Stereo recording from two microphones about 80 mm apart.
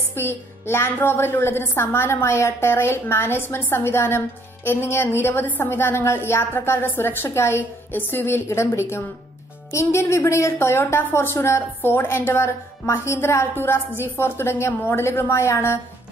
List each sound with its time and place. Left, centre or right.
0.1 s a woman's voice: left